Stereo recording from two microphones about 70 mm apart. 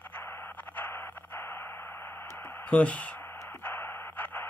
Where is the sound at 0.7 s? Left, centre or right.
Left.